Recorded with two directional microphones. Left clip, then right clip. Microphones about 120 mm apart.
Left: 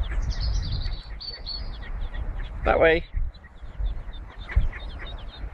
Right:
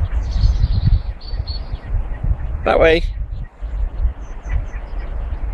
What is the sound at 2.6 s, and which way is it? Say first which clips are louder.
Speech: right 6 dB; 30° right (ahead or behind).